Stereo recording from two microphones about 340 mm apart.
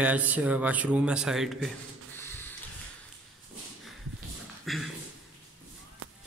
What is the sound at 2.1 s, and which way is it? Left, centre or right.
Printer, centre.